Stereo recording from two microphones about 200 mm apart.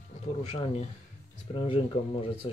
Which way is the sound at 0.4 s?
30° left (ahead or behind).